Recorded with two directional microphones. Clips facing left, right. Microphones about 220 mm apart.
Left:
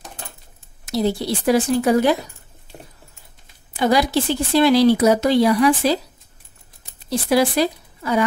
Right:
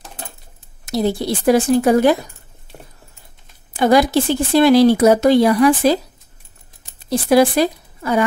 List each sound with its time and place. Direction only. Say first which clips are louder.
0.8 s speech: right 2 dB; 50° right (ahead or behind)
3.7 s speech: right 4 dB; 50° right (ahead or behind)
7.1 s speech: right 4 dB; 50° right (ahead or behind)